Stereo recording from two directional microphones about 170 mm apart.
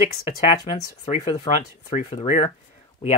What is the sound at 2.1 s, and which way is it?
Speech, 35° left (ahead or behind).